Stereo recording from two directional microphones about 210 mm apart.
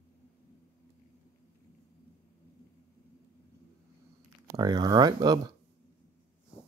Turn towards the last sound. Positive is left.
turn(degrees=-20)  # may be behind; listen again after turning